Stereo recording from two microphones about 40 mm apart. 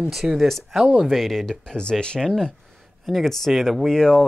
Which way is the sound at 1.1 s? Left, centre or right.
Centre.